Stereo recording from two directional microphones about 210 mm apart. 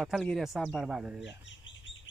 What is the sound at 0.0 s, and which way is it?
Speech, centre (ahead or behind).